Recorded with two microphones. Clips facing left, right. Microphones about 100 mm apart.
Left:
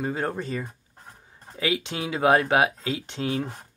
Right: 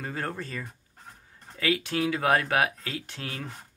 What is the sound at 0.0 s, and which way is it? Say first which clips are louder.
Speech: left 6 dB; 20° left (ahead or behind).